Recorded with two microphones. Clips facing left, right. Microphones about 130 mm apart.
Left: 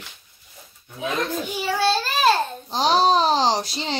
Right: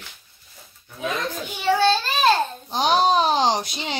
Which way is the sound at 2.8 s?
30° left (ahead or behind).